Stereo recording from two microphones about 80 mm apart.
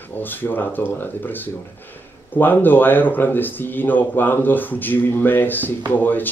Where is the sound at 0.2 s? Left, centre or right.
Left.